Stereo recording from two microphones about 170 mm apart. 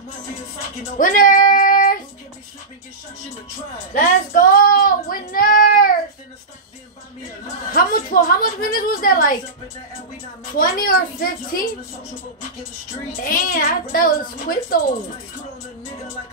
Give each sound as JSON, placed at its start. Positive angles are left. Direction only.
{"t": 0.9, "sound": "child singing", "side_deg": 55}
{"t": 3.9, "sound": "child singing", "side_deg": 55}
{"t": 7.7, "sound": "a woman's voice", "side_deg": 55}
{"t": 10.6, "sound": "a woman's voice", "side_deg": 55}
{"t": 13.2, "sound": "a woman's voice", "side_deg": 55}